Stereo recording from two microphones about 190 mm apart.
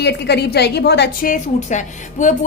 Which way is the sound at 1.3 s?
40° left (ahead or behind).